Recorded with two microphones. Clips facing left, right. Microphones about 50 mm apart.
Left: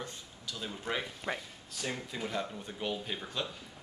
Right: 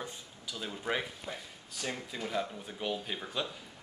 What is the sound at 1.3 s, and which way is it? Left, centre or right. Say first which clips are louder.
Speech: left 5 dB; left.